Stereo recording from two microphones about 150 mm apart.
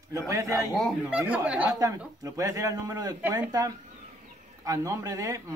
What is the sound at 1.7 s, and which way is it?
Speech, 25° right (ahead or behind).